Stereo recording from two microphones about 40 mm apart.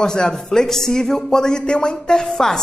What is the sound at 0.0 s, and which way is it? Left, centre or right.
A man's voice, centre.